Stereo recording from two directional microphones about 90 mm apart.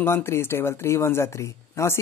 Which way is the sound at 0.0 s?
25° left (ahead or behind).